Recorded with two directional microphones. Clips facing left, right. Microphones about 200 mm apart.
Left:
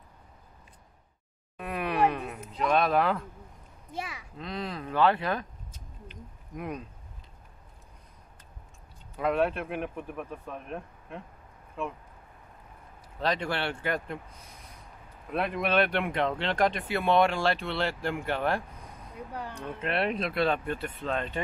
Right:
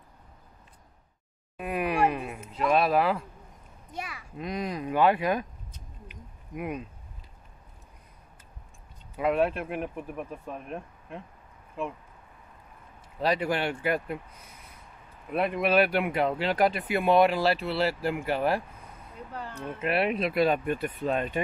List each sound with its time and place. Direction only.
1.6 s a sound: 10° right (ahead or behind)
3.9 s a sound: 25° left (ahead or behind)
4.4 s speech: 15° right (ahead or behind)
6.0 s owl: 10° right (ahead or behind)
9.1 s speech: 5° right (ahead or behind)
13.2 s speech: 10° right (ahead or behind)
15.3 s speech: 5° right (ahead or behind)
19.3 s speech: 15° left (ahead or behind)
19.8 s speech: 5° right (ahead or behind)